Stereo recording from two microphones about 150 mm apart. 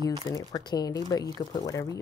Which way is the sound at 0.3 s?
25° left (ahead or behind).